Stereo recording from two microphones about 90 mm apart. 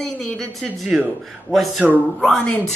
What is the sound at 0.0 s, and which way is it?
A woman's voice, 5° left (ahead or behind).